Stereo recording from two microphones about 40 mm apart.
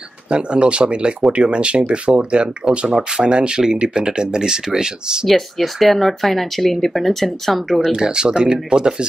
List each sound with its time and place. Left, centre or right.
0.3 s speech: right
5.2 s speech: centre
7.8 s speech: centre